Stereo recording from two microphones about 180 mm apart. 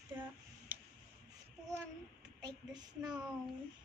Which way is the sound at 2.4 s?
20° right (ahead or behind).